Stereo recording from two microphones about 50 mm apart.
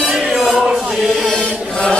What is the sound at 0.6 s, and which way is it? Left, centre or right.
Chant, centre.